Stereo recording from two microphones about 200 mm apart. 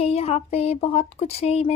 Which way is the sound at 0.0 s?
30° left (ahead or behind).